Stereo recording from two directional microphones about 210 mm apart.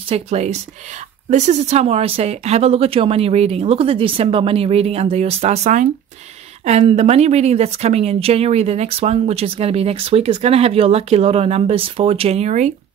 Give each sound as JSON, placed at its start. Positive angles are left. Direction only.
{"t": 0.1, "sound": "a woman's voice", "side_deg": -30}